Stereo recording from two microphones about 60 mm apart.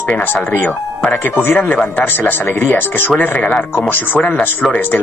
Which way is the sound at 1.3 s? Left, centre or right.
Left.